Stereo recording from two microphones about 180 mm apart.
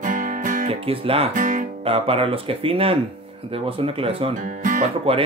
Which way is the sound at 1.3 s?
45° right (ahead or behind).